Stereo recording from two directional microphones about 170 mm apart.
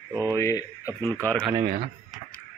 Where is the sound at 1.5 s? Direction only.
30° right (ahead or behind).